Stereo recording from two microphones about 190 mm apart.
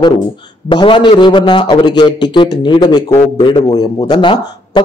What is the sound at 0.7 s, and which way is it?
A man's voice, 25° left (ahead or behind).